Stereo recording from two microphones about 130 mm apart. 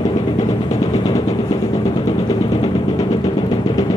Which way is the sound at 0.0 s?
30° left (ahead or behind).